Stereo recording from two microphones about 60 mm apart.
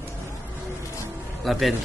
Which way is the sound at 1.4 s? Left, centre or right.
Centre.